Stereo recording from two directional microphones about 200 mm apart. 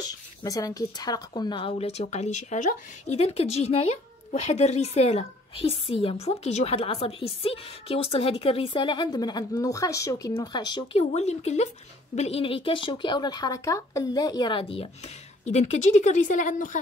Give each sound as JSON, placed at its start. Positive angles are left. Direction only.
{"t": 0.0, "sound": "speech", "side_deg": 20}